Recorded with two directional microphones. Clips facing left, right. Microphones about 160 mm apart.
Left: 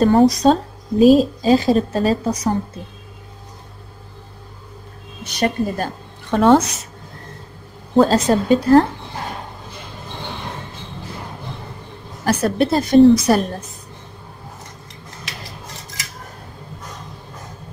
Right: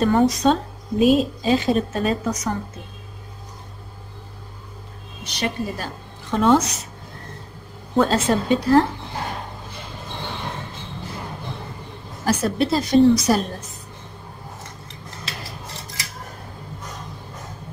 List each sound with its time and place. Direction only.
0.0 s speech: 35° left (ahead or behind)
5.2 s speech: 50° left (ahead or behind)
6.3 s a woman's voice: 60° left (ahead or behind)
7.9 s speech: 35° left (ahead or behind)
12.3 s a woman's voice: 60° left (ahead or behind)